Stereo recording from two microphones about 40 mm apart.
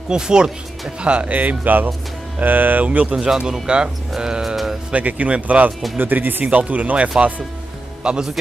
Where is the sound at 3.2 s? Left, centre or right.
Centre.